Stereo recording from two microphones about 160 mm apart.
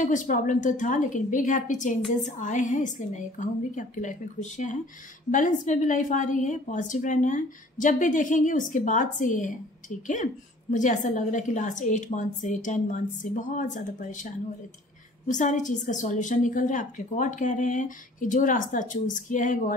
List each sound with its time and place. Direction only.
0.0 s a woman's voice: 55° left (ahead or behind)